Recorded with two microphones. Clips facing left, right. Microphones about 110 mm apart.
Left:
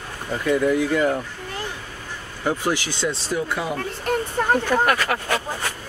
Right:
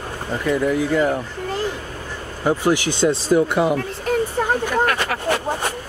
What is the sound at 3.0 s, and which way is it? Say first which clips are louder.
Speech: right 10 dB; 20° right (ahead or behind).